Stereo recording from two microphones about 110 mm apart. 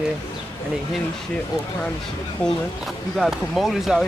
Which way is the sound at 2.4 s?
10° left (ahead or behind).